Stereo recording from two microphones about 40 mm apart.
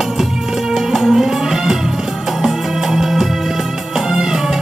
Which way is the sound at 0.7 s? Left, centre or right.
Centre.